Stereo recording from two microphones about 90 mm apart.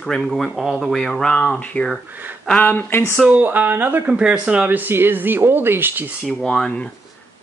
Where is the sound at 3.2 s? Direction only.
15° right (ahead or behind).